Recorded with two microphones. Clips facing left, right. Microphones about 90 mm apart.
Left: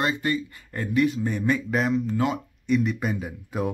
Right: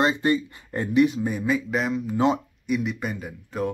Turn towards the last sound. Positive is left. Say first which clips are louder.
# even
turn(degrees=5)  # may be behind; listen again after turning